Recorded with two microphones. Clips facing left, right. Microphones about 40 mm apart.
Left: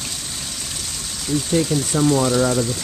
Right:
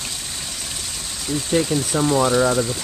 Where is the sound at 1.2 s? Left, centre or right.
Centre.